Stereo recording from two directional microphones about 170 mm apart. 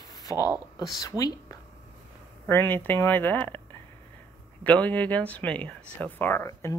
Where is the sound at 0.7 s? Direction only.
25° left (ahead or behind).